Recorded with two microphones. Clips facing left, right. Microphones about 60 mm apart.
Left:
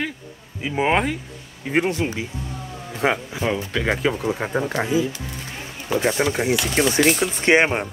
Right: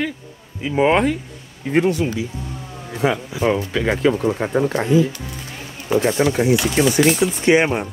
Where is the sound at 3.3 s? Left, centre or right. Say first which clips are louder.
Right 5 dB; centre.